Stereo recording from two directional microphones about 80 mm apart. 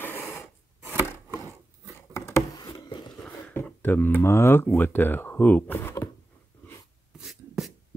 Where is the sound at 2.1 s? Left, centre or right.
Left.